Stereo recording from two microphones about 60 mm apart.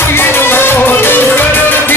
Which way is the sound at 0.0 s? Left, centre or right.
Left.